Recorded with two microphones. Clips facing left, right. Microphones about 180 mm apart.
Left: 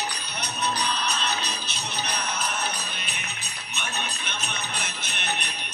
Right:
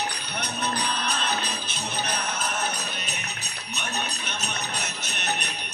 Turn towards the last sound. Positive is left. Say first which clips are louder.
# right 1 dB
turn(degrees=-40)  # may be behind; listen again after turning